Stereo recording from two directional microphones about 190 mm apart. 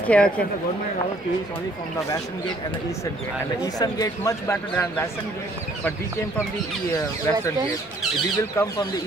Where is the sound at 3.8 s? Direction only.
20° left (ahead or behind).